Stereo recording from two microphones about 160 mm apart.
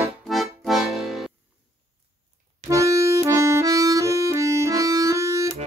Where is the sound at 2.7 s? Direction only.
20° right (ahead or behind).